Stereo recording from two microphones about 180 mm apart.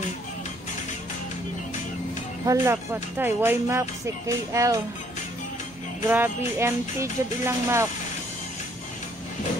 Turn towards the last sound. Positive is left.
turn(degrees=-15)  # may be behind; listen again after turning